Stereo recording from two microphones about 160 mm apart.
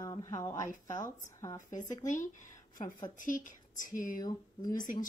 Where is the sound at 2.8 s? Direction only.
25° left (ahead or behind).